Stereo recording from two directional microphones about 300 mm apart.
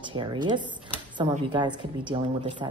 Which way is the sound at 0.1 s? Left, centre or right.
Centre.